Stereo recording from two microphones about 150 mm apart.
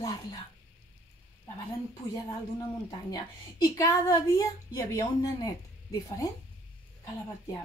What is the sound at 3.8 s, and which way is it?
A woman's voice, 20° left (ahead or behind).